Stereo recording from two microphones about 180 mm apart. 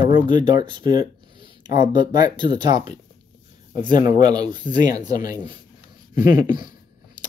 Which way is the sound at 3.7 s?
25° right (ahead or behind).